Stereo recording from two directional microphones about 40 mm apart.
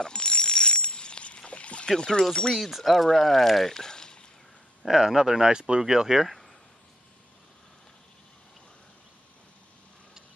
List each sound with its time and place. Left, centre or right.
0.0 s bicycle bell: left
1.9 s speech: centre
2.5 s speech: centre
4.8 s speech: centre